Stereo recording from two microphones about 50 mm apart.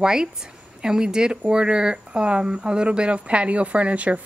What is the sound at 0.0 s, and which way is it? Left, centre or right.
Speech, centre.